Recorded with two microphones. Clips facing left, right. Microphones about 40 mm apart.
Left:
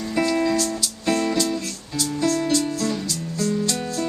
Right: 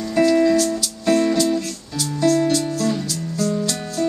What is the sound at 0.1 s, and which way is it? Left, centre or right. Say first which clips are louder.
Music: right 6 dB; centre.